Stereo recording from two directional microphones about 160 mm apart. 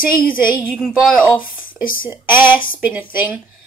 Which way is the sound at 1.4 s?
60° left (ahead or behind).